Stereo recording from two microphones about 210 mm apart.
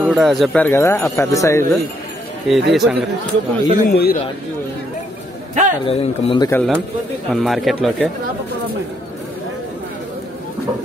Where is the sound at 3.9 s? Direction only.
50° left (ahead or behind).